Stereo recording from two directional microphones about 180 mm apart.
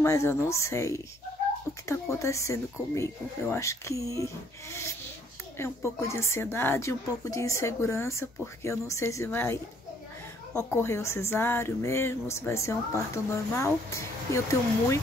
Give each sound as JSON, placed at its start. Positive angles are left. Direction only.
{"t": 0.0, "sound": "speech", "side_deg": 15}